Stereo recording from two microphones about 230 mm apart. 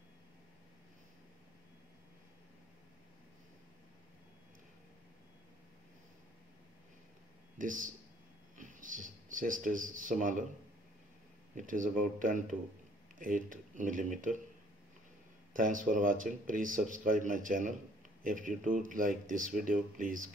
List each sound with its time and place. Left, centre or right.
7.5 s speech: right
11.5 s speech: right
15.5 s speech: right